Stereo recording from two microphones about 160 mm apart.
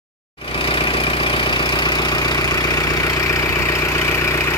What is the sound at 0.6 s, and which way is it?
Vehicle, 35° left (ahead or behind).